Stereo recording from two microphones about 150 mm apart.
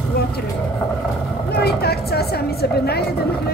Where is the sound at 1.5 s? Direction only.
90° left.